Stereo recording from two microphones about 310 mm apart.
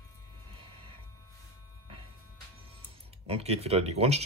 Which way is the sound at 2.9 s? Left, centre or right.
Centre.